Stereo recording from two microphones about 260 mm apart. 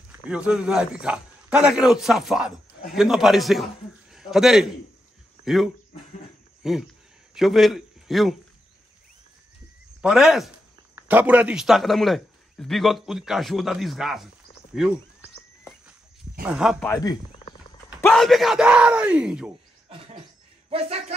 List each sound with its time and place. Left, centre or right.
0.3 s a man's voice: centre
10.0 s a man's voice: centre
16.4 s a man's voice: centre
16.8 s speech: centre
18.0 s a man's voice: centre
19.9 s cough: right